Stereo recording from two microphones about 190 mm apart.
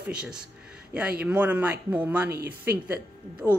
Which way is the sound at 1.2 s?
10° right (ahead or behind).